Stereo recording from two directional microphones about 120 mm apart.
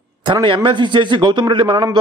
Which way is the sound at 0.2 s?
40° right (ahead or behind).